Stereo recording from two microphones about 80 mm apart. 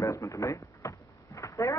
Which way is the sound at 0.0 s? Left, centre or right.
Left.